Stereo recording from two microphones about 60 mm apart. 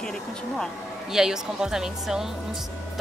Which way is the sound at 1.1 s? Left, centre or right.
Centre.